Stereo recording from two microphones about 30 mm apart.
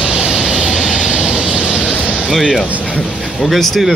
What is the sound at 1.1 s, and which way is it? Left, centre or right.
Vehicle, right.